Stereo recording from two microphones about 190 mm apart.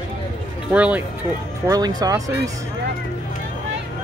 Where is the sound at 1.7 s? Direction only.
20° right (ahead or behind).